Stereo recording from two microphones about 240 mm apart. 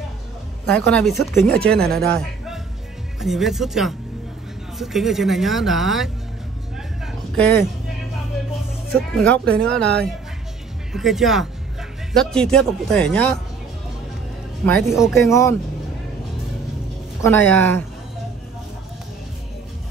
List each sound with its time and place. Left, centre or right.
0.7 s speech: centre
7.1 s a sound: centre
9.2 s speech: centre
10.9 s speech: centre
14.7 s speech: centre
15.1 s speech: centre
17.2 s speech: centre